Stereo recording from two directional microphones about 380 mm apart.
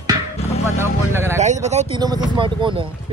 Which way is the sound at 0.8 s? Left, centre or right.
Centre.